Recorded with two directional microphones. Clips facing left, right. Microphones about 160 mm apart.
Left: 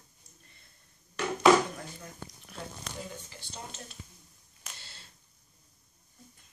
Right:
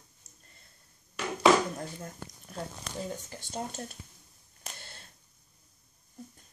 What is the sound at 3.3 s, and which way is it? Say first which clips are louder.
Speech: right 8 dB; 45° right (ahead or behind).